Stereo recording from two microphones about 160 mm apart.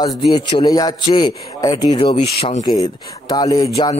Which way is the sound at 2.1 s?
40° left (ahead or behind).